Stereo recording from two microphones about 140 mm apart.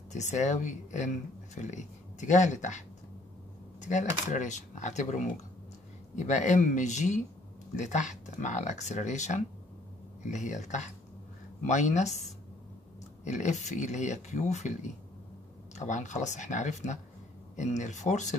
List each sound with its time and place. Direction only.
0.1 s speech: 55° left (ahead or behind)
3.8 s speech: 60° left (ahead or behind)